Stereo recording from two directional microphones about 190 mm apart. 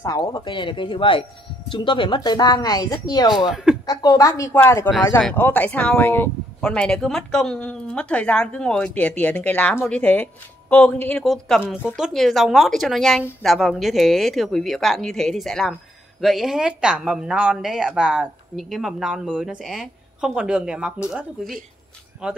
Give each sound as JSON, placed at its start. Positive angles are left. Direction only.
{"t": 0.0, "sound": "speech", "side_deg": 20}
{"t": 3.3, "sound": "speech", "side_deg": -5}
{"t": 3.8, "sound": "speech", "side_deg": 20}
{"t": 22.2, "sound": "speech", "side_deg": -5}